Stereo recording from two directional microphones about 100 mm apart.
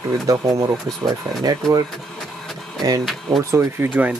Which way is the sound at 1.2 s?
45° right (ahead or behind).